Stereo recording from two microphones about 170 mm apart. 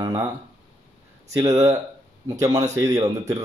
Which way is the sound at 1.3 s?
15° right (ahead or behind).